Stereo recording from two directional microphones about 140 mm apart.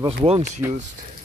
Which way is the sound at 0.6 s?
20° right (ahead or behind).